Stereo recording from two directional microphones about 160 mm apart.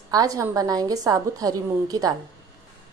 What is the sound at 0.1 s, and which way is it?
A woman's voice, 20° right (ahead or behind).